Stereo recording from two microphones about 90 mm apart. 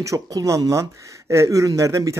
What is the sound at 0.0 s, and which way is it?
Speech, 40° right (ahead or behind).